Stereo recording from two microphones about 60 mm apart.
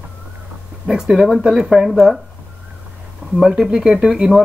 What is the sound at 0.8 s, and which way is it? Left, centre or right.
Speech, centre.